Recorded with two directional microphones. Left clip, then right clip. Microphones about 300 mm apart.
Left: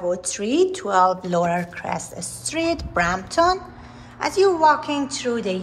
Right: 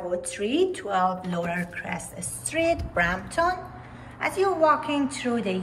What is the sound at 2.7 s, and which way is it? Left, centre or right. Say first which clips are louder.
A woman's voice: left 5 dB; centre.